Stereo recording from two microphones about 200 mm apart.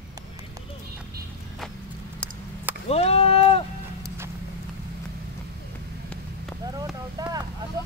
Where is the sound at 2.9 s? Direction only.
30° left (ahead or behind).